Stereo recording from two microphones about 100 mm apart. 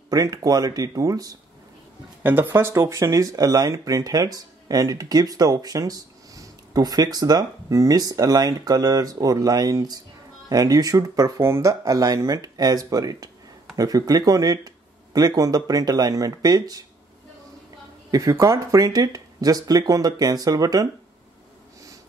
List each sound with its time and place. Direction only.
0.1 s speech: 35° right (ahead or behind)
2.2 s speech: 20° right (ahead or behind); by 16.8 s 40° right (ahead or behind)
18.3 s speech: 30° right (ahead or behind)